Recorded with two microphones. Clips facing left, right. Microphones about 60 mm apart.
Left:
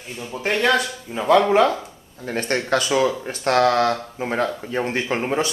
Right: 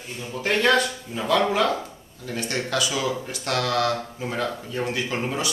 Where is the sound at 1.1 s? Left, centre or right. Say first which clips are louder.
Left 7 dB; left.